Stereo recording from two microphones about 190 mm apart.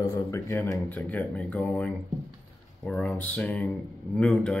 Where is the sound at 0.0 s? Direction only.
15° left (ahead or behind).